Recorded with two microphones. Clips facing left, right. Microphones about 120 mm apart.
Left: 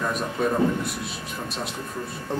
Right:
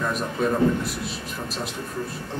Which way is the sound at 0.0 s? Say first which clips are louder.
Even; centre (ahead or behind).